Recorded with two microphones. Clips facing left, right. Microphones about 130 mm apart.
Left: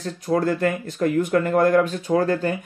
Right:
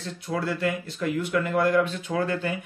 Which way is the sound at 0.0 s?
40° left (ahead or behind).